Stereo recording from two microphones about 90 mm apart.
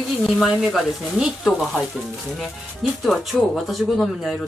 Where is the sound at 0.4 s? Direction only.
Centre (ahead or behind).